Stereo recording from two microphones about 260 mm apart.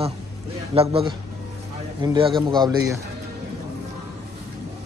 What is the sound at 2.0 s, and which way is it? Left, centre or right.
Speech, centre.